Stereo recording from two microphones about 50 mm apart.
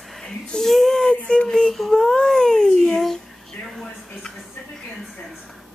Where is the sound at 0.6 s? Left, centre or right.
Centre.